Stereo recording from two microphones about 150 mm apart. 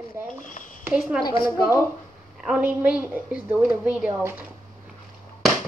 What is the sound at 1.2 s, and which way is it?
Speech, 25° left (ahead or behind).